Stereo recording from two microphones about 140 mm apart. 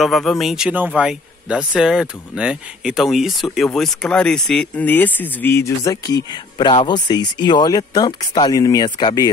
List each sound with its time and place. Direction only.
0.0 s speech: centre (ahead or behind); by 9.3 s 30° left (ahead or behind)